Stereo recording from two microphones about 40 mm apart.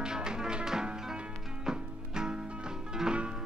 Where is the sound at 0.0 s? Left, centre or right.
Centre.